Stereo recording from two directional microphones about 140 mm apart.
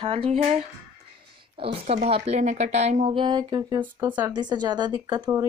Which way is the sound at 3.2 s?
30° right (ahead or behind).